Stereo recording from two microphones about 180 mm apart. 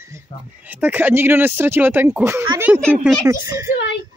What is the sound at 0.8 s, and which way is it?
Speech, 10° right (ahead or behind).